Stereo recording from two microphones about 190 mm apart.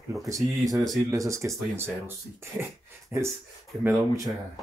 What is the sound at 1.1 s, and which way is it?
Speech, 15° right (ahead or behind).